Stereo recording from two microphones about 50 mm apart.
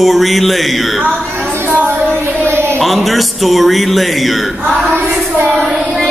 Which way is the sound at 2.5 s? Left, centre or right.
Right.